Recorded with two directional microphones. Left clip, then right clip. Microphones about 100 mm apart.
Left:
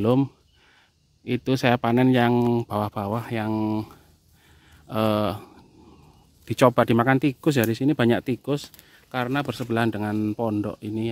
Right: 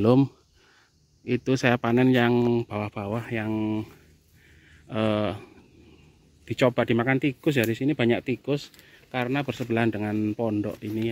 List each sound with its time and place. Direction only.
0.0 s speech: 10° right (ahead or behind)
1.2 s speech: 25° left (ahead or behind); by 3.9 s 40° left (ahead or behind)
4.8 s speech: 30° left (ahead or behind)
6.4 s speech: 90° left
8.5 s speech: 35° left (ahead or behind)
8.8 s speech: 25° left (ahead or behind)